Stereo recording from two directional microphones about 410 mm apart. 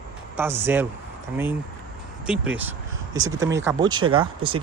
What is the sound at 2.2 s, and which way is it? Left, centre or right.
Speech, centre.